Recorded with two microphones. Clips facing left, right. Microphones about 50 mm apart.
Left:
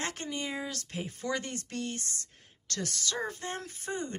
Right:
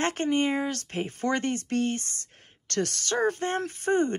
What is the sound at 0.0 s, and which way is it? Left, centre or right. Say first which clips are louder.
Speech: right 11 dB; right.